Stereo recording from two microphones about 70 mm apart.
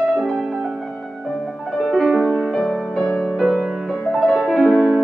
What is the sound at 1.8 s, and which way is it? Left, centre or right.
Music, centre.